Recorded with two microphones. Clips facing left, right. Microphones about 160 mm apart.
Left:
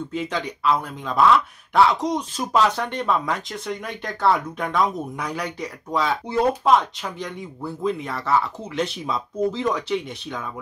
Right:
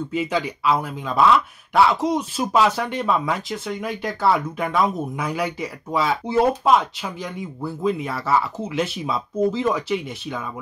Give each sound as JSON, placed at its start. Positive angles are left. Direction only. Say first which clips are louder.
{"t": 0.1, "sound": "speech", "louder": "right 5 dB", "side_deg": -5}